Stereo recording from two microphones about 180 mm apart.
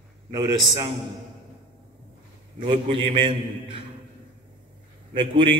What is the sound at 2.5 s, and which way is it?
A man's voice, 40° right (ahead or behind).